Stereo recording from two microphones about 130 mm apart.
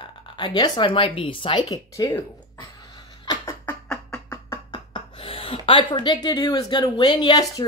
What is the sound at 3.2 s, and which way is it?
Beatboxing, 35° left (ahead or behind).